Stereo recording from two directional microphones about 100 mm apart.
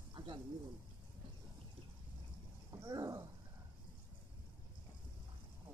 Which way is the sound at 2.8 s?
35° right (ahead or behind).